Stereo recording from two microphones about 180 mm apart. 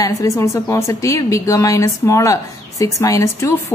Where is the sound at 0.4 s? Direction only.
15° left (ahead or behind).